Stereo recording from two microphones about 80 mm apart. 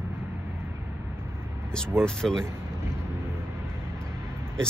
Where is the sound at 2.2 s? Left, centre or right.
Centre.